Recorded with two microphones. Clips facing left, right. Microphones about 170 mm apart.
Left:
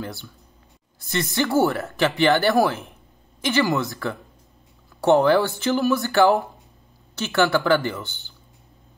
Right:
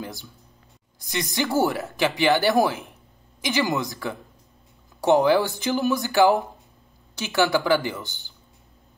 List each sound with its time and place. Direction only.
0.0 s speech: 15° right (ahead or behind)